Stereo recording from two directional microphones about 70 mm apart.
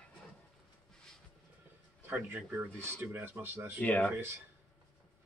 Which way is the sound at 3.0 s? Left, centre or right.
Right.